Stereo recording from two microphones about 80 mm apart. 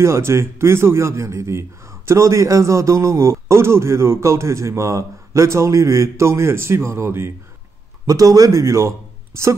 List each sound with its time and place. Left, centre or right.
0.0 s speech: right
8.1 s speech: right